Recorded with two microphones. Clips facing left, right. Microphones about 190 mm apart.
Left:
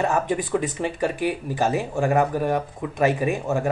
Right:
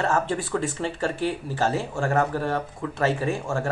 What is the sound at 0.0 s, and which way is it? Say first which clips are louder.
Speech: left 2 dB; 15° left (ahead or behind).